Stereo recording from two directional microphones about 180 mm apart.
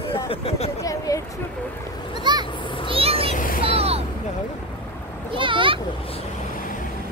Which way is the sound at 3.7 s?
35° right (ahead or behind).